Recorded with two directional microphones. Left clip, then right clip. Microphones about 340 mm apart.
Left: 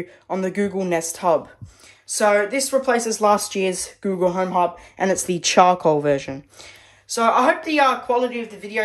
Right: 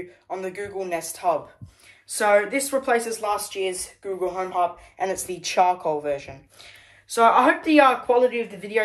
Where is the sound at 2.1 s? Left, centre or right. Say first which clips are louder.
Left 2 dB; centre; by 6.3 s left.